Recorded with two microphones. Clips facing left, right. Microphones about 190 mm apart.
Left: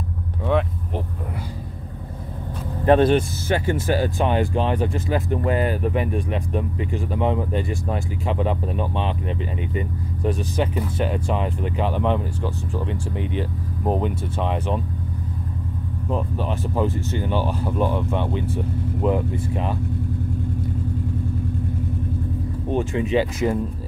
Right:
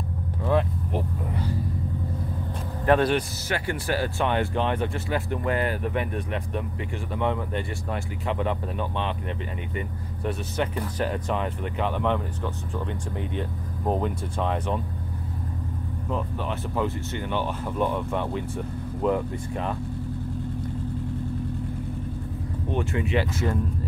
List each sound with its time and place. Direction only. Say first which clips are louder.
0.5 s vehicle: left 2 dB; centre (ahead or behind)
2.8 s speech: left 5 dB; 25° left (ahead or behind)
4.6 s speech: left 4 dB; 35° left (ahead or behind)
4.8 s speech: left 4 dB; 20° left (ahead or behind)
13.2 s speech: left 4 dB; 90° left
13.8 s speech: left 3 dB; 20° left (ahead or behind)
17.1 s speech: left 5 dB; 35° left (ahead or behind)
17.6 s speech: left 2 dB; 5° left (ahead or behind)
18.9 s speech: left 2 dB; 20° left (ahead or behind)
22.8 s speech: left 5 dB; 20° left (ahead or behind)